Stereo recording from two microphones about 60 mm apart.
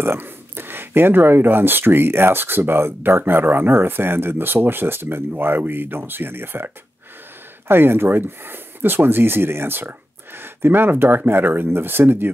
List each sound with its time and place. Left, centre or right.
0.0 s speech: right